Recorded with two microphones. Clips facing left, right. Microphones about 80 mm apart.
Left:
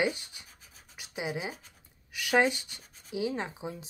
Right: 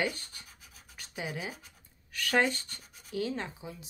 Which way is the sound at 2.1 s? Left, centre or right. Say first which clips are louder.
Left 2 dB; centre.